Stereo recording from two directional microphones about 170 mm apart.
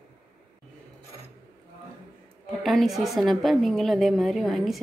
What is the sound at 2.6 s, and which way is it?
A woman's voice, centre (ahead or behind).